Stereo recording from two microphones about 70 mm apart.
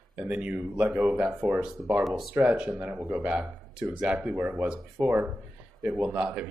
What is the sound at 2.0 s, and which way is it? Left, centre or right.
Speech, centre.